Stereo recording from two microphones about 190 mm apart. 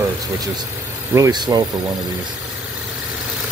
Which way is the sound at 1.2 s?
20° right (ahead or behind).